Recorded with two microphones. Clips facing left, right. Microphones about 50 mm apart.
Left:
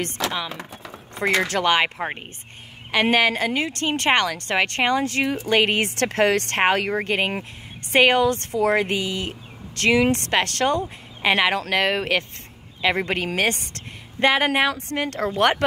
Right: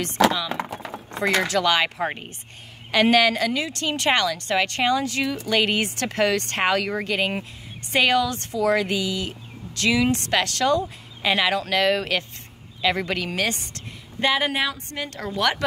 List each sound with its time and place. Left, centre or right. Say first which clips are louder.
0.0 s a woman's voice: right 6 dB; left
0.5 s speech: right 6 dB; right
1.5 s a woman's voice: left 1 dB; left
2.0 s speech: right 2 dB; centre
2.9 s a woman's voice: right 1 dB; left